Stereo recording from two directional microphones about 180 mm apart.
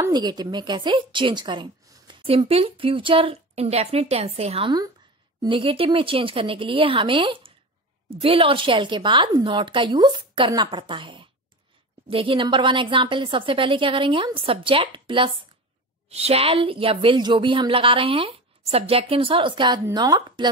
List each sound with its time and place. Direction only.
0.0 s speech: 20° right (ahead or behind)